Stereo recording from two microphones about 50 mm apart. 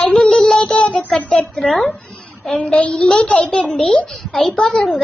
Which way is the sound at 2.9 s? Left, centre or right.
Centre.